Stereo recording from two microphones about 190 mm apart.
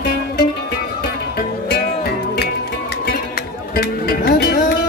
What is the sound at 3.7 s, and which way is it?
Music, 55° left (ahead or behind).